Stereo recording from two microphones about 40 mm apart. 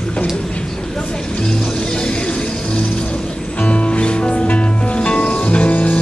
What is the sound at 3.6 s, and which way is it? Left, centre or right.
Music, left.